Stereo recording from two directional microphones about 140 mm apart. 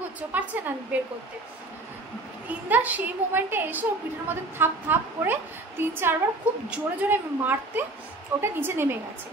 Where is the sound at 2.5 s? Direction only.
10° right (ahead or behind).